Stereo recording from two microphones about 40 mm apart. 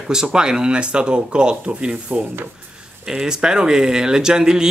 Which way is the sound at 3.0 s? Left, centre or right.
Centre.